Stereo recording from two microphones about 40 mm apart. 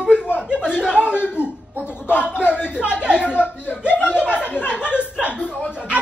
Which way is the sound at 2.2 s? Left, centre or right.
Right.